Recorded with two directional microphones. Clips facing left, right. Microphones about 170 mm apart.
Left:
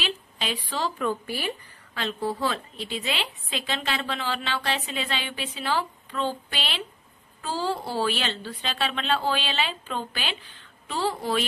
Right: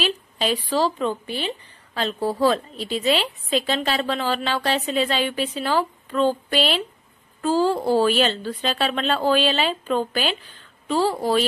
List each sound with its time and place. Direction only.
0.0 s a woman's voice: 40° right (ahead or behind); by 1.5 s 20° right (ahead or behind)
2.0 s a woman's voice: 40° right (ahead or behind)